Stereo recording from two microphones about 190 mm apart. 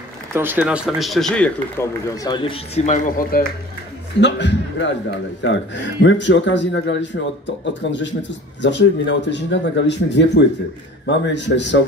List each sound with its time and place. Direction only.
0.3 s a man's voice: 10° right (ahead or behind); by 1.9 s 5° left (ahead or behind)
2.2 s speech: 25° left (ahead or behind); by 3.4 s 50° left (ahead or behind)
4.2 s a man's voice: 65° left (ahead or behind)